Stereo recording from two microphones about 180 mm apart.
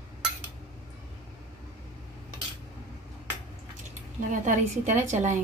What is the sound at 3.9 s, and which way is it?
Speech, 45° right (ahead or behind).